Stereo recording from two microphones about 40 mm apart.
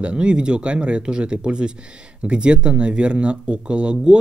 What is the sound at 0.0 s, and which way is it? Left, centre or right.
Speech, right.